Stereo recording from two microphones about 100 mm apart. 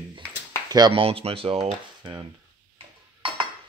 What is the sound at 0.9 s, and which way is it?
Speech, 70° right (ahead or behind).